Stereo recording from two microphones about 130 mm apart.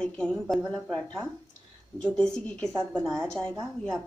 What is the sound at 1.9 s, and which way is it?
A woman's voice, 5° left (ahead or behind).